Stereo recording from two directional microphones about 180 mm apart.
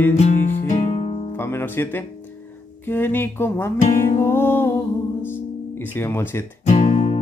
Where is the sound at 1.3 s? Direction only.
10° left (ahead or behind).